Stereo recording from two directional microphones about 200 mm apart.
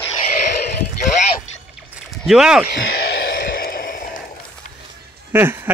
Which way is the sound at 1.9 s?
Centre (ahead or behind).